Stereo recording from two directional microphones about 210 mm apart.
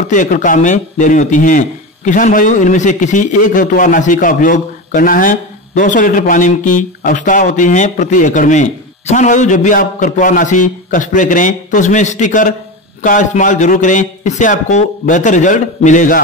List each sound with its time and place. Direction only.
0.1 s a man's voice: 35° left (ahead or behind)